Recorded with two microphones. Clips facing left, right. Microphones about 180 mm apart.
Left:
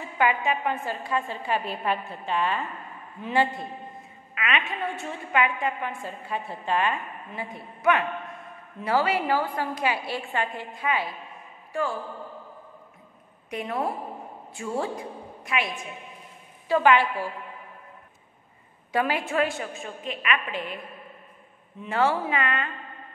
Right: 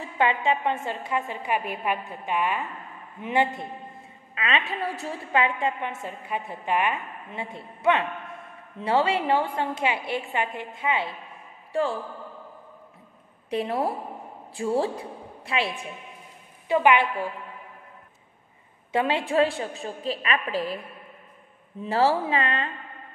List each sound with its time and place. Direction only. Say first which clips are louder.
0.0 s a woman's voice: right 1 dB; 30° right (ahead or behind)
4.4 s a woman's voice: right 1 dB; 30° right (ahead or behind)
13.5 s a woman's voice: right 3 dB; 30° right (ahead or behind)
16.6 s a woman's voice: even; 20° right (ahead or behind)
18.9 s a woman's voice: right 1 dB; 25° right (ahead or behind)
21.8 s a woman's voice: right 2 dB; 35° right (ahead or behind)